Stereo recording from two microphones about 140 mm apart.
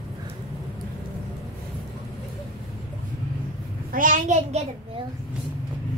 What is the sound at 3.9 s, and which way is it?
Speech, 70° right (ahead or behind).